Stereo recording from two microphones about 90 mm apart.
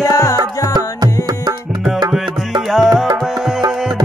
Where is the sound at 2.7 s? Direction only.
Centre (ahead or behind).